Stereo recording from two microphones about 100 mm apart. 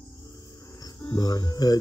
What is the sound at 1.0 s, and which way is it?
Cricket, 40° left (ahead or behind).